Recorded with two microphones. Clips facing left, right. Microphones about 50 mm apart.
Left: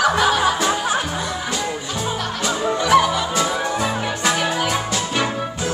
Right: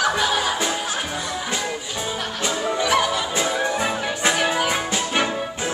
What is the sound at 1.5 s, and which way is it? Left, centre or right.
Music, centre.